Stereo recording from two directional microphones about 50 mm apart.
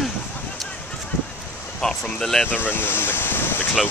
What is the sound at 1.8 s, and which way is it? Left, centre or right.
Speech, centre.